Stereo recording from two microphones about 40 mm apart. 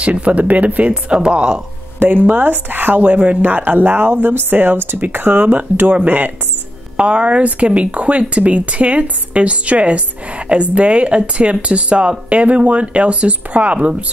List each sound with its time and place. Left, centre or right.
0.0 s speech: right
1.1 s speech: right
2.0 s speech: right
7.0 s speech: right